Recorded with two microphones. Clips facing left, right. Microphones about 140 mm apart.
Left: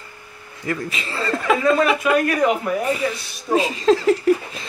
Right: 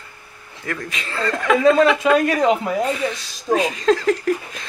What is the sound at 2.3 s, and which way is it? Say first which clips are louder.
Speech: right 1 dB; 25° right (ahead or behind).